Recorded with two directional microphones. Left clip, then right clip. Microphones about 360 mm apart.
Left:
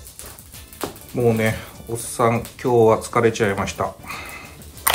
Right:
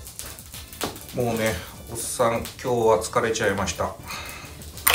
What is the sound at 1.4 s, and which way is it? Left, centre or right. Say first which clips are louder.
Speech: left 3 dB; centre.